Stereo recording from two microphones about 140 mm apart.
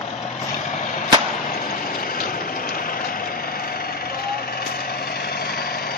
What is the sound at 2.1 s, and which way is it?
Vehicle, 90° left.